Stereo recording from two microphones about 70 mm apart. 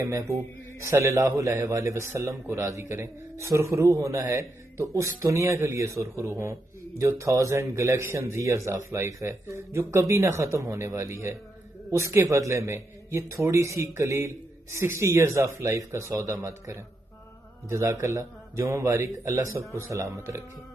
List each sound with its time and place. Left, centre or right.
0.0 s speech: right